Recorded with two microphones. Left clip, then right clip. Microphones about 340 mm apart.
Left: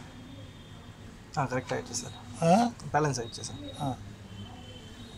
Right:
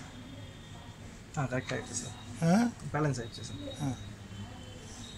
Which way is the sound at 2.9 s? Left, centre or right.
Centre.